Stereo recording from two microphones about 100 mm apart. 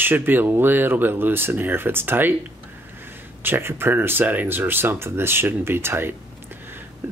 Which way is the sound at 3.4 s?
20° right (ahead or behind).